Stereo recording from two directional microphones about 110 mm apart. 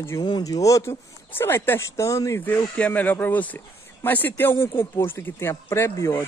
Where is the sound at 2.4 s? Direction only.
15° left (ahead or behind).